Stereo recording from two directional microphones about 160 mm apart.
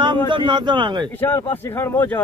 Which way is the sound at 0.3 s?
30° right (ahead or behind).